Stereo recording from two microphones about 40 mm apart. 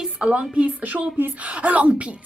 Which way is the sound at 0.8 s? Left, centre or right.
Right.